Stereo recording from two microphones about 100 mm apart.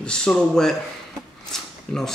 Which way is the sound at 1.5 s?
5° left (ahead or behind).